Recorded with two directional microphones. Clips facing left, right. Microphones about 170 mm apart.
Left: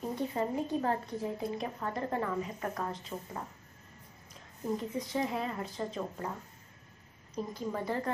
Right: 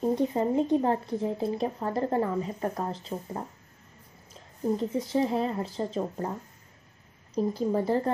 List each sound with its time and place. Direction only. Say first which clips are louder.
0.0 s speech: right 8 dB; 25° right (ahead or behind)
7.3 s speech: right 9 dB; 35° right (ahead or behind)